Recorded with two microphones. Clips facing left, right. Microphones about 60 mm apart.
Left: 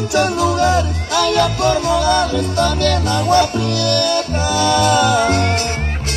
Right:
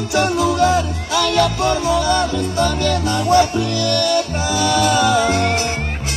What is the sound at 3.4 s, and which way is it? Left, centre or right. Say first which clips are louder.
Music: even; left.